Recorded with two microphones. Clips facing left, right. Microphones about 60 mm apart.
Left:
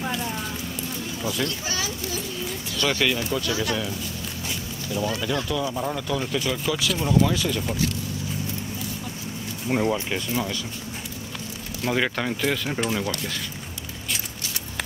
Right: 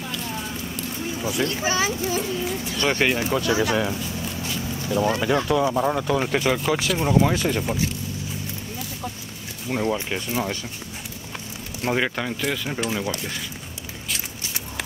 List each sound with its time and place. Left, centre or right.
0.0 s clip-clop: left
1.1 s speech: right
4.8 s speech: right
7.6 s speech: right
9.7 s speech: centre
11.8 s speech: right
12.2 s speech: centre
13.1 s speech: right